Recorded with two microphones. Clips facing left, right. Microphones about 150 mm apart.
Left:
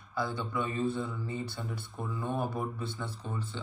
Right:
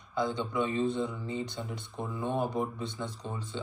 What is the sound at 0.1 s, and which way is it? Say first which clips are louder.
Speech: right 3 dB; 20° right (ahead or behind).